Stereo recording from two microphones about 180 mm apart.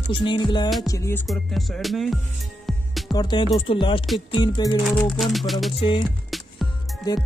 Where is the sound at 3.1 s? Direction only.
25° left (ahead or behind).